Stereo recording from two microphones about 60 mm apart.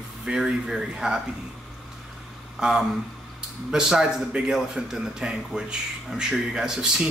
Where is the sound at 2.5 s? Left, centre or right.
Centre.